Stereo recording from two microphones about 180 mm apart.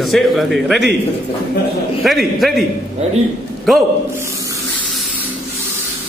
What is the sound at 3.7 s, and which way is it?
Speech, centre (ahead or behind).